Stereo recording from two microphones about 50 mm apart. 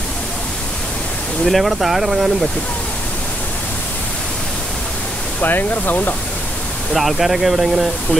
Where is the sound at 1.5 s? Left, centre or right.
Centre.